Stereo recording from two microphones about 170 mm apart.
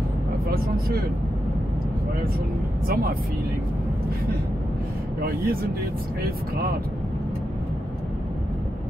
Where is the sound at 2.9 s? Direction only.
60° right (ahead or behind).